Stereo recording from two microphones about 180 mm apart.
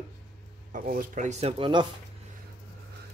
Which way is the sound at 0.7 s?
50° right (ahead or behind).